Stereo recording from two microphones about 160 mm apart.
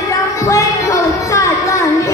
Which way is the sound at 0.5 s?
20° left (ahead or behind).